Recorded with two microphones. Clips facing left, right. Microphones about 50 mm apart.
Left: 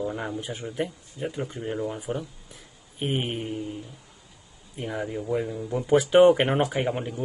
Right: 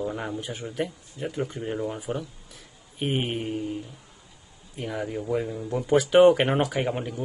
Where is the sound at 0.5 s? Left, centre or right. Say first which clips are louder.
Even; left.